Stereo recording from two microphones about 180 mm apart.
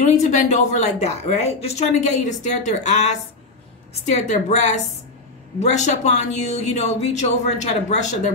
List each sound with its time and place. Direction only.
0.0 s speech: 40° left (ahead or behind)